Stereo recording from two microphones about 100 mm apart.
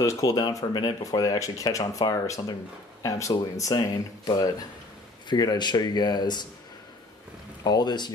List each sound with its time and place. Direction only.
0.0 s speech: 35° left (ahead or behind)
7.6 s speech: 45° left (ahead or behind)